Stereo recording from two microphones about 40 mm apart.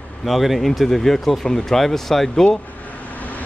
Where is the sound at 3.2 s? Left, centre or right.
Left.